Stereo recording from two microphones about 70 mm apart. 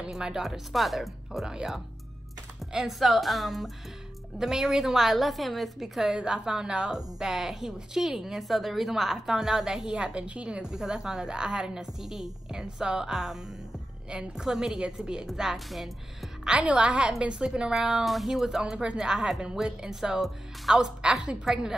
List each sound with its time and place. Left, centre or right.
0.1 s a woman's voice: centre
16.4 s a woman's voice: centre